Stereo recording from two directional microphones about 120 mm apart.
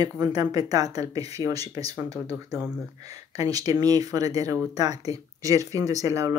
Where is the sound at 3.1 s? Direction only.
30° right (ahead or behind).